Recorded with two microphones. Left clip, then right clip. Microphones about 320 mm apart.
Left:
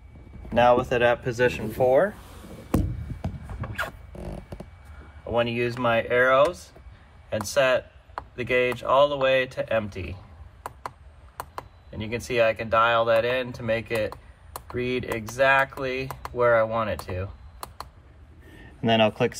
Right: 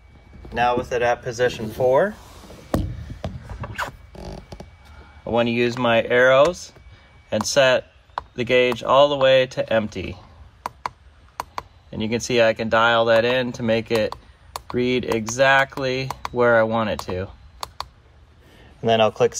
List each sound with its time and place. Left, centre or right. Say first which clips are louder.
0.6 s speech: left 1 dB; centre
3.6 s a sound: right 4 dB; centre
4.2 s a sound: right 2 dB; centre
5.6 s speech: right 5 dB; centre
11.3 s speech: right 6 dB; centre
18.9 s speech: right 4 dB; centre